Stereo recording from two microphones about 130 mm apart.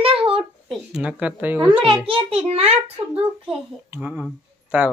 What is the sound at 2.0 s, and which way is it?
A child's voice, 45° right (ahead or behind).